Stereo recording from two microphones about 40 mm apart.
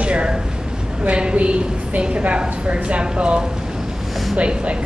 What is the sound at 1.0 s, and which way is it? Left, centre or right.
A woman's voice, right.